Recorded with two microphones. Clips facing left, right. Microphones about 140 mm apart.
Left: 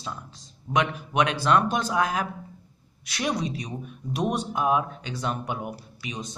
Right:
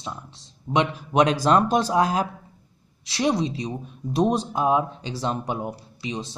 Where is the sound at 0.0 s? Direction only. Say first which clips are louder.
Right 1 dB; 20° right (ahead or behind).